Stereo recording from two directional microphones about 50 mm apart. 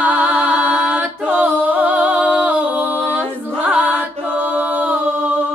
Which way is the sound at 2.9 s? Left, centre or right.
Right.